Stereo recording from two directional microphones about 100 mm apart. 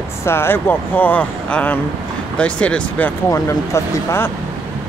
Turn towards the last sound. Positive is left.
turn(degrees=25)  # may be behind; listen again after turning